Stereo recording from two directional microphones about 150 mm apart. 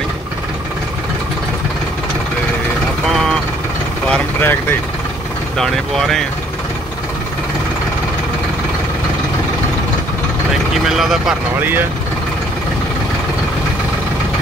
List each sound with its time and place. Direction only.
4.1 s speech: 15° left (ahead or behind)
5.6 s speech: 5° left (ahead or behind)
10.9 s speech: centre (ahead or behind)